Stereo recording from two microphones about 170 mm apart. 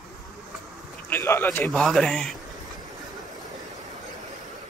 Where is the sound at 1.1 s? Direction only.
15° left (ahead or behind).